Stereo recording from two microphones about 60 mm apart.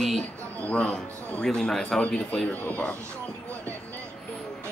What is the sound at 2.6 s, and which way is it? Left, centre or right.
Speech, left.